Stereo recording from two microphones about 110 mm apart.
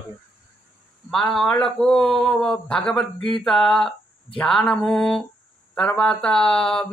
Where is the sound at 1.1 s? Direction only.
5° left (ahead or behind).